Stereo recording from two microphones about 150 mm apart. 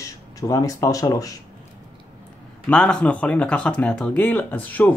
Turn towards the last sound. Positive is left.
turn(degrees=10)  # may be behind; listen again after turning